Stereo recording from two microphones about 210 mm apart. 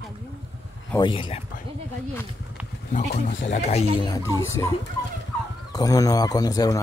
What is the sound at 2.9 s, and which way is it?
Speech, 40° left (ahead or behind).